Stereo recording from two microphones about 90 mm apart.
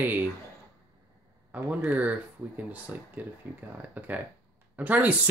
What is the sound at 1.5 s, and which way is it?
Speech, 20° right (ahead or behind).